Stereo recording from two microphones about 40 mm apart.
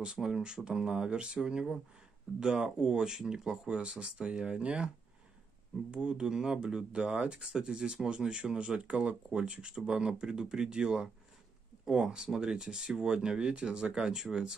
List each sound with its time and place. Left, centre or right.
0.0 s speech: centre
3.6 s speech: right
12.6 s speech: centre